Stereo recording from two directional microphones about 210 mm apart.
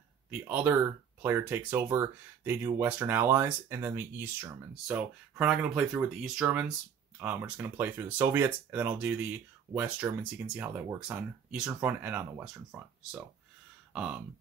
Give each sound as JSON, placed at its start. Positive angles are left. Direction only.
{"t": 0.3, "sound": "speech", "side_deg": -10}
{"t": 13.9, "sound": "speech", "side_deg": 0}